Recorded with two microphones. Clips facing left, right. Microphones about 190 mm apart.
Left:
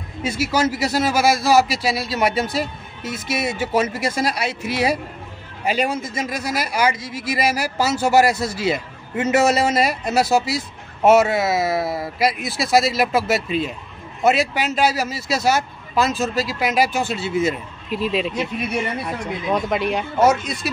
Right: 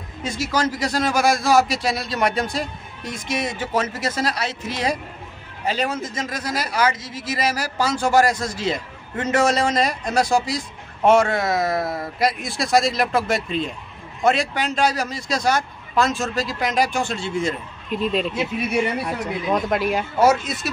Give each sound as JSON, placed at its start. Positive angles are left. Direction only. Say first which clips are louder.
{"t": 0.2, "sound": "a man's voice", "louder": "left 3 dB", "side_deg": 10}